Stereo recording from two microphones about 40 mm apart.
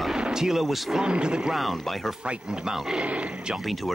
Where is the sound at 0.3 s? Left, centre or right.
Centre.